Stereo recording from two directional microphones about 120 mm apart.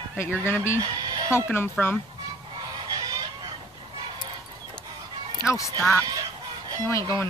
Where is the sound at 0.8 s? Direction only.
35° right (ahead or behind).